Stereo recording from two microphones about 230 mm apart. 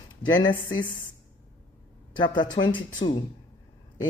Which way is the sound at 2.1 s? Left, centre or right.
Centre.